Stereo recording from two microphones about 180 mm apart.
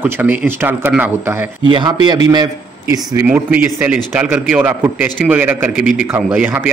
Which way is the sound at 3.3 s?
5° right (ahead or behind).